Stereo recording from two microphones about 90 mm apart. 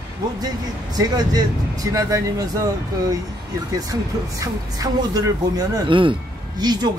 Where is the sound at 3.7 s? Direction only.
40° right (ahead or behind).